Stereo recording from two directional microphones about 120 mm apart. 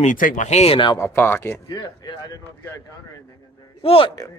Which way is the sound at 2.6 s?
25° left (ahead or behind).